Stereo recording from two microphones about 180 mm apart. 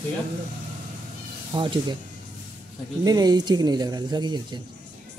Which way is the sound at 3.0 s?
20° right (ahead or behind).